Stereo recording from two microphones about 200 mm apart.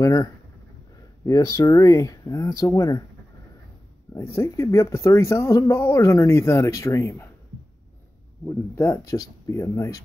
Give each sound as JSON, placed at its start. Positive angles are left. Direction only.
{"t": 0.0, "sound": "speech", "side_deg": 15}
{"t": 4.1, "sound": "speech", "side_deg": 15}
{"t": 8.5, "sound": "speech", "side_deg": 15}